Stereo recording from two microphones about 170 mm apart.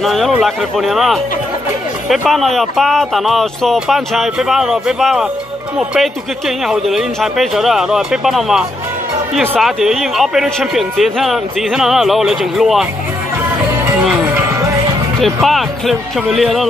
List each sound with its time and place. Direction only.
0.0 s speech: centre (ahead or behind)
14.0 s music: 10° right (ahead or behind)
15.1 s speech: centre (ahead or behind)